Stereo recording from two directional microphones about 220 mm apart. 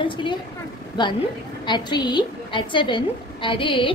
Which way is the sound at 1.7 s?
20° left (ahead or behind).